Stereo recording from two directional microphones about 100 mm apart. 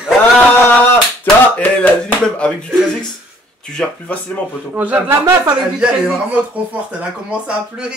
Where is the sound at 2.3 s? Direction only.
10° left (ahead or behind).